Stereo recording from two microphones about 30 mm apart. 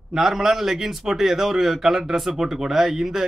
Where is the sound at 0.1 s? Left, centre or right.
Centre.